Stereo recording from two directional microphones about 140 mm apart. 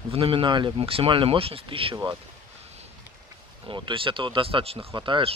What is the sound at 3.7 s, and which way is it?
Speech, 35° right (ahead or behind).